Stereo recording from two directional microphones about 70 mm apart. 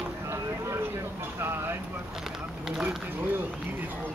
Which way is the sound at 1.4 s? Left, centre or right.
Right.